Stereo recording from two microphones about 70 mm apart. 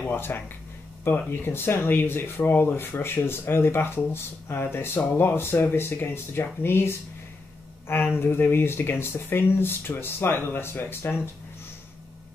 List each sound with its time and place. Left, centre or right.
0.1 s speech: left